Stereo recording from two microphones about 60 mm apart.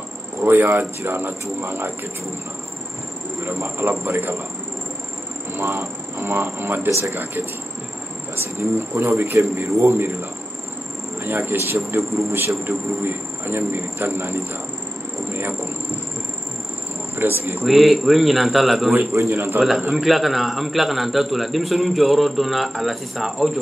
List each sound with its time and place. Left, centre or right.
0.4 s speech: right
3.4 s speech: right
4.0 s a man's voice: right
5.5 s vehicle: right
6.2 s speech: right
8.5 s a man's voice: right
11.2 s a man's voice: right
17.1 s speech: right
17.6 s a man's voice: centre
19.1 s a man's voice: right
19.6 s a man's voice: centre